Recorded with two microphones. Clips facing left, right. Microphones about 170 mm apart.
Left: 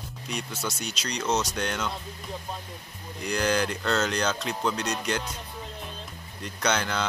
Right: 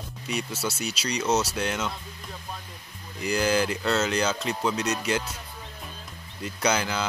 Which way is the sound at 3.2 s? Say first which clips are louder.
Right 2 dB; 5° right (ahead or behind).